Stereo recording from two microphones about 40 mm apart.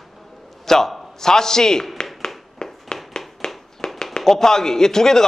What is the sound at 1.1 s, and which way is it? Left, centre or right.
Speech, centre.